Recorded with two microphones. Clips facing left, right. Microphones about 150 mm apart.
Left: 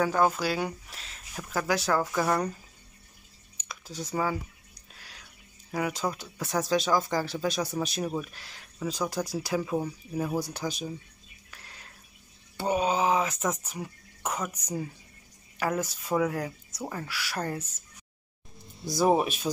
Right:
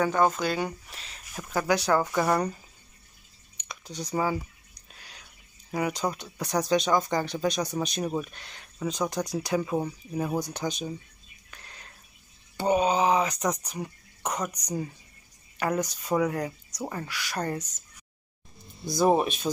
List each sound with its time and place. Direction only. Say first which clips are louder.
0.0 s speech: right 1 dB; 5° left (ahead or behind)
3.5 s a sound: right 1 dB; centre (ahead or behind)
5.7 s speech: right 2 dB; centre (ahead or behind)
11.5 s drip: right 1 dB; 5° left (ahead or behind)
12.5 s a woman's voice: right 3 dB; centre (ahead or behind)
18.9 s speech: right 1 dB; 5° left (ahead or behind)